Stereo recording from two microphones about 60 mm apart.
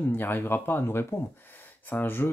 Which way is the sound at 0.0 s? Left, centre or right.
Left.